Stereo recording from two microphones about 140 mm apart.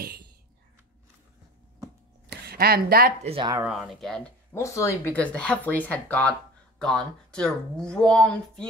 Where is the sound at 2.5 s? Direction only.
90° right.